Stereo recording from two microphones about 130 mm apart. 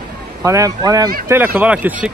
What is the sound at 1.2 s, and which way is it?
Speech, 15° right (ahead or behind).